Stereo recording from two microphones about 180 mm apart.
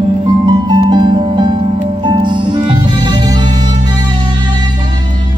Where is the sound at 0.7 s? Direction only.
25° right (ahead or behind).